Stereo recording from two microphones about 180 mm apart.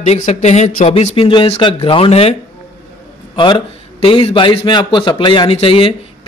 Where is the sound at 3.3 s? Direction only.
25° left (ahead or behind).